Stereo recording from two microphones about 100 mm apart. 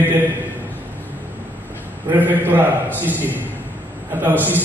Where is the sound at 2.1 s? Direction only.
20° right (ahead or behind).